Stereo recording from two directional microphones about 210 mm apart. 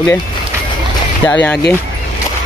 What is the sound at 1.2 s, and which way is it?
Speech, 5° left (ahead or behind).